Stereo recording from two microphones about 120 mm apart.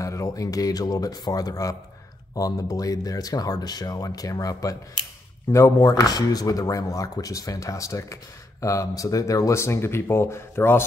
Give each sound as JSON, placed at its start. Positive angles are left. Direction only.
{"t": 0.0, "sound": "speech", "side_deg": 25}